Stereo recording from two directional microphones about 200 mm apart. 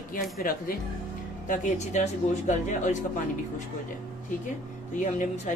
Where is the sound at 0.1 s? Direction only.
45° left (ahead or behind).